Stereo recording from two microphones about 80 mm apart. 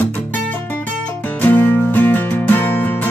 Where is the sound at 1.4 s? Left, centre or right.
Left.